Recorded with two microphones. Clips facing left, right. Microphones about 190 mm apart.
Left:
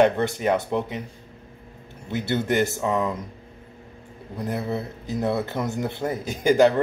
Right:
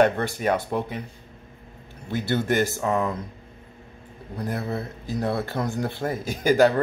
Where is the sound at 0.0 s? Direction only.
20° left (ahead or behind).